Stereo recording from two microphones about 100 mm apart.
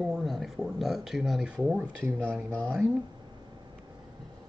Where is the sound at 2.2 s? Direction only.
10° left (ahead or behind).